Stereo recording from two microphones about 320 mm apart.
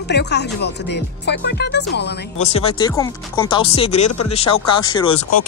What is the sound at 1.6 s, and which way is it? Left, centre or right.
Speech, left.